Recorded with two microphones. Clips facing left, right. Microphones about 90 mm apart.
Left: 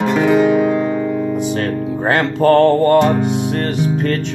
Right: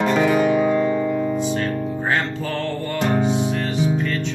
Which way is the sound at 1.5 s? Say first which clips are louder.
Left 4 dB; 75° left (ahead or behind).